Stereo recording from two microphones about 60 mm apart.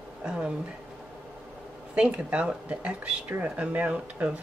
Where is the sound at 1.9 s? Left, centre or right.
Centre.